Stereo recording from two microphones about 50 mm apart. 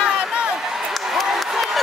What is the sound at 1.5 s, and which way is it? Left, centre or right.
Crowd, centre.